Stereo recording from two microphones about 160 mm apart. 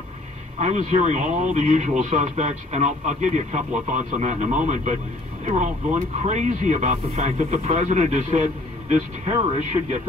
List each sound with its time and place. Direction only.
0.6 s speech: 45° right (ahead or behind)